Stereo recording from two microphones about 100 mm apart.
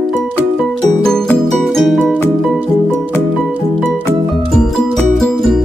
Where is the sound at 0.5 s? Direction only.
5° left (ahead or behind).